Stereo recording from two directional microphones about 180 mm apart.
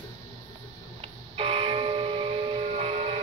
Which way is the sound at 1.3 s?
30° right (ahead or behind).